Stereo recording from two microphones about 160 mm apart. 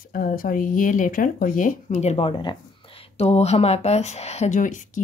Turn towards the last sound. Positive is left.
turn(degrees=55)  # may be behind; listen again after turning